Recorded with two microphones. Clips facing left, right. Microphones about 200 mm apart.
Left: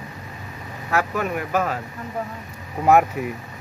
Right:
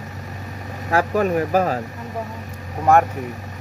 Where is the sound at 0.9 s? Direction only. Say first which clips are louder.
Right 5 dB; 35° right (ahead or behind).